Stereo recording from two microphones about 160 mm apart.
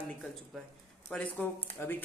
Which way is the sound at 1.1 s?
10° left (ahead or behind).